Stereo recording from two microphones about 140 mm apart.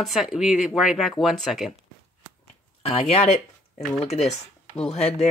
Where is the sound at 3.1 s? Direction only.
50° left (ahead or behind).